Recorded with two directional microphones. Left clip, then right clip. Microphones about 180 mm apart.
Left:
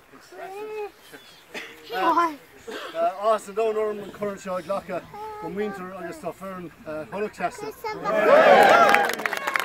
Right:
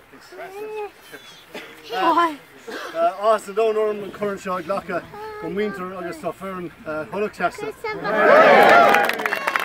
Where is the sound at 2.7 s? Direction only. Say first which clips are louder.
Right 3 dB; 50° left (ahead or behind).